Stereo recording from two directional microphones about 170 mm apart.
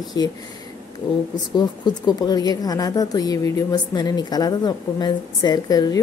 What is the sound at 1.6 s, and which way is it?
A woman's voice, 25° left (ahead or behind).